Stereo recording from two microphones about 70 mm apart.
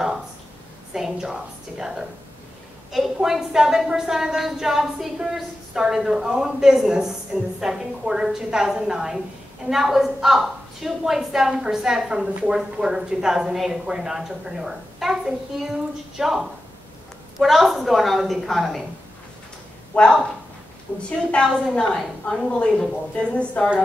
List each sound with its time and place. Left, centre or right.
0.9 s a woman's voice: centre
7.3 s a woman's voice: right
7.6 s a woman's voice: centre
19.9 s speech: centre
20.9 s a woman's voice: left
21.3 s a woman's voice: centre